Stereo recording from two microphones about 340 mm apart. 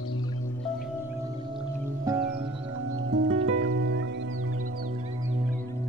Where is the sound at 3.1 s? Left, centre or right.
Right.